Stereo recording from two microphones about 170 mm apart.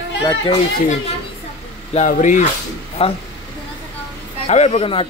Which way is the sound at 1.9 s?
45° left (ahead or behind).